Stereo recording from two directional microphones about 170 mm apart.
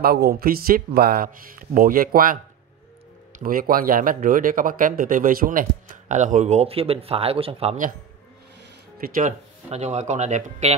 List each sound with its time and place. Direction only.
0.0 s speech: 65° right (ahead or behind)
3.3 s speech: 55° right (ahead or behind); by 7.7 s 35° right (ahead or behind)
9.0 s speech: 55° right (ahead or behind)
9.7 s speech: 40° right (ahead or behind)